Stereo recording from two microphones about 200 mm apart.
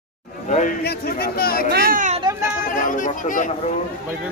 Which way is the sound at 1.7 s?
50° right (ahead or behind).